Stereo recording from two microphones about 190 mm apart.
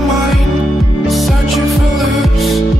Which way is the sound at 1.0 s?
Centre (ahead or behind).